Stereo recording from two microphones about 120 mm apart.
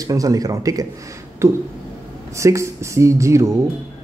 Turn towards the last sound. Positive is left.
turn(degrees=-25)  # may be behind; listen again after turning